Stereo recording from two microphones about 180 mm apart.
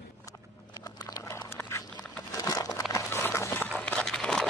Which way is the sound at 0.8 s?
20° left (ahead or behind).